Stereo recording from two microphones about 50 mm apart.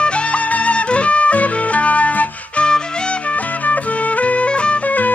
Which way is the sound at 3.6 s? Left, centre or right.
Left.